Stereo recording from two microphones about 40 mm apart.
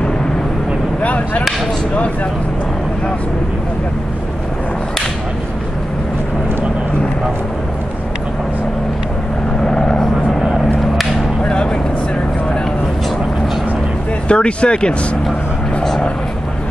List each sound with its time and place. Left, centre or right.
1.0 s a sound: left
9.7 s vehicle: centre
11.4 s vehicle: left
14.2 s speech: left